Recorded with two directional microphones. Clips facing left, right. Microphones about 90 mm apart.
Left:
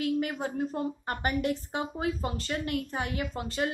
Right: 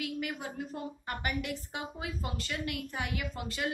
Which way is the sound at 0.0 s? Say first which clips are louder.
Left 7 dB; 40° left (ahead or behind).